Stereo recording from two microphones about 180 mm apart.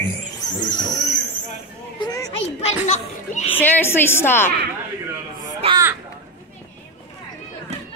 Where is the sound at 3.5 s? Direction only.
10° left (ahead or behind).